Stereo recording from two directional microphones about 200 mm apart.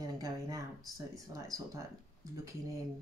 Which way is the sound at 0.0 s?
15° right (ahead or behind).